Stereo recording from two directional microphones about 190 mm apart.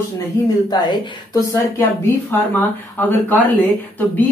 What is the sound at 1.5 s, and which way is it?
Speech, 10° left (ahead or behind).